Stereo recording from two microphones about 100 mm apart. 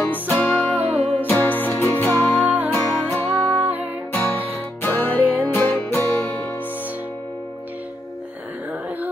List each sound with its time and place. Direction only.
0.0 s music: 20° left (ahead or behind)
0.7 s music: 75° right (ahead or behind)
1.1 s music: 20° left (ahead or behind)
3.5 s music: 15° right (ahead or behind)
4.1 s music: 25° left (ahead or behind)